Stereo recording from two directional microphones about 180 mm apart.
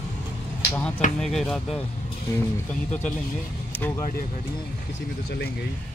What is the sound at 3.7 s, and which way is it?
Speech, 10° left (ahead or behind).